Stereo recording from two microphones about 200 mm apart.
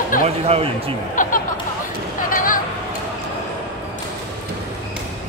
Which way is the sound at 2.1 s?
45° left (ahead or behind).